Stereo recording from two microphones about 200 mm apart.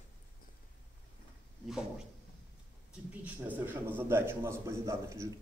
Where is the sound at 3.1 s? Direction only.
10° right (ahead or behind).